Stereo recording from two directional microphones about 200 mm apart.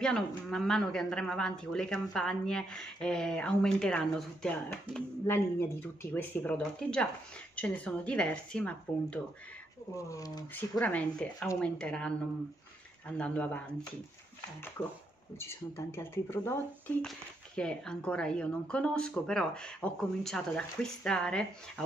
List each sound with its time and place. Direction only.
0.5 s speech: 5° left (ahead or behind)
9.9 s speech: 15° left (ahead or behind)
10.8 s speech: 5° left (ahead or behind)
13.2 s speech: 5° left (ahead or behind)
15.3 s speech: 10° left (ahead or behind)
17.6 s speech: 5° left (ahead or behind)